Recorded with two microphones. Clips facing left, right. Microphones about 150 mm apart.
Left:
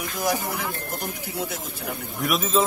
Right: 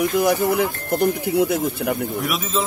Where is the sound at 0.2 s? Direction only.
60° right (ahead or behind).